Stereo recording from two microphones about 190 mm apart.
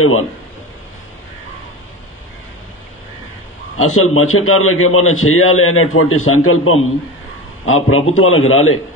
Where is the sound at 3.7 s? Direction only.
90° left.